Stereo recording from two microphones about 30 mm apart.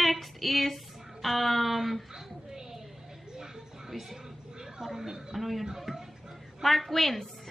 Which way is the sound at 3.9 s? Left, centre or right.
Centre.